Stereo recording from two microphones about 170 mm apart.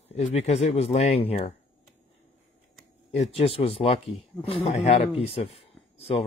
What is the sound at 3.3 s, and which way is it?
Speech, 35° left (ahead or behind).